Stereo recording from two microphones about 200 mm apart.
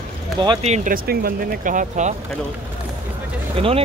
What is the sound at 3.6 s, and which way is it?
Speech, 30° right (ahead or behind).